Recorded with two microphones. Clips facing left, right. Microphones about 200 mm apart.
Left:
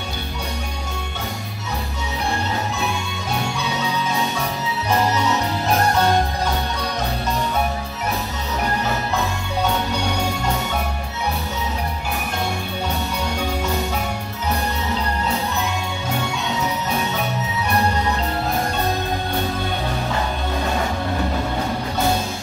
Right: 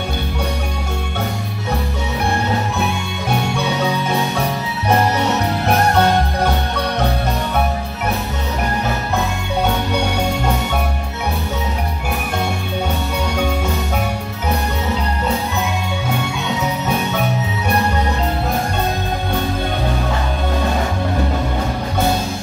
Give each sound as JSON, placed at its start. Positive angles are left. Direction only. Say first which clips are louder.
{"t": 4.8, "sound": "music", "louder": "right 4 dB", "side_deg": -60}